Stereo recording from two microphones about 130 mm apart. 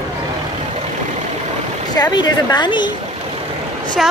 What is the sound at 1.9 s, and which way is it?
Speech, 30° left (ahead or behind).